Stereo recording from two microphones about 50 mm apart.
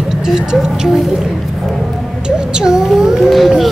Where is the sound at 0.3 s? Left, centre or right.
Centre.